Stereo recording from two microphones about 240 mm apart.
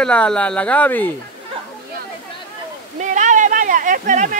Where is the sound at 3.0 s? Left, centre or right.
Right.